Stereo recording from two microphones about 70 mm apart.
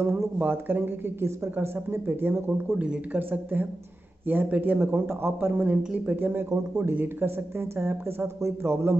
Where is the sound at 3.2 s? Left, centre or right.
Right.